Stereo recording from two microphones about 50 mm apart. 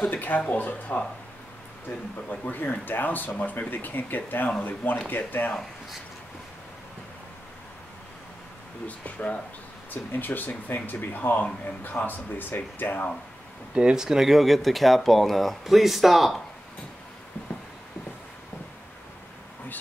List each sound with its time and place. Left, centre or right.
0.0 s speech: left
2.2 s speech: left
8.8 s speech: left
13.7 s speech: centre